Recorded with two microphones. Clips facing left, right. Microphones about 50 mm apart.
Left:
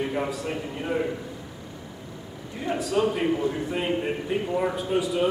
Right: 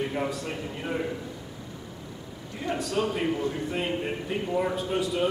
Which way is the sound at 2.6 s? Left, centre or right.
Centre.